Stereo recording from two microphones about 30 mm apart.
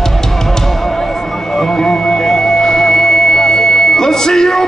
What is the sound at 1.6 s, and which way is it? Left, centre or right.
Music, centre.